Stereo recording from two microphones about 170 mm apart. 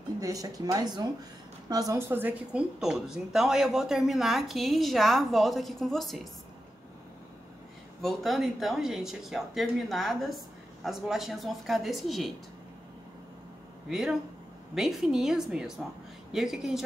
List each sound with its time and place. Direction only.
0.2 s speech: 20° right (ahead or behind); by 6.2 s centre (ahead or behind)
8.0 s speech: centre (ahead or behind)
13.8 s speech: 5° right (ahead or behind)